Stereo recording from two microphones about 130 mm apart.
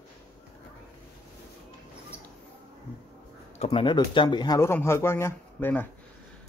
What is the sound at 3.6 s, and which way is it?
Speech, 40° left (ahead or behind).